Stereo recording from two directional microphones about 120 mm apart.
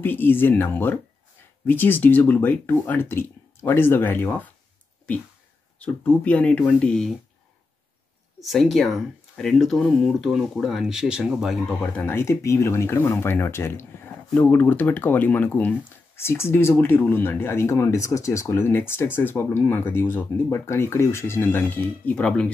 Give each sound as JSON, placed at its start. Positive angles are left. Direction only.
{"t": 0.0, "sound": "speech", "side_deg": 15}
{"t": 8.4, "sound": "speech", "side_deg": 0}